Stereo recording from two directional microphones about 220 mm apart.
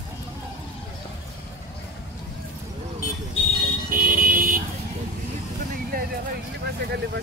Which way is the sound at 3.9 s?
40° right (ahead or behind).